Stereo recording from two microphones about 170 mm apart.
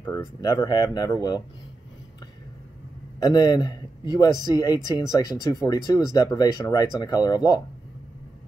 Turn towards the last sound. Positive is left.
turn(degrees=20)  # may be behind; listen again after turning